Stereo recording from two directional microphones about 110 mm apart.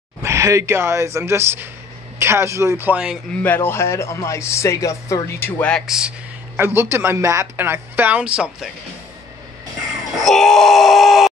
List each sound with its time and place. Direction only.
0.2 s speech: 25° right (ahead or behind)
2.9 s speech: 10° right (ahead or behind)
3.4 s speech: 20° left (ahead or behind)
5.6 s speech: 10° left (ahead or behind)
5.9 s a sound: 10° right (ahead or behind)
6.6 s speech: 25° right (ahead or behind)
8.2 s speech: 5° right (ahead or behind)
10.1 s a sound: centre (ahead or behind)